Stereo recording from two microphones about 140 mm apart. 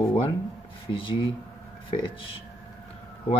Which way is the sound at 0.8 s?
40° left (ahead or behind).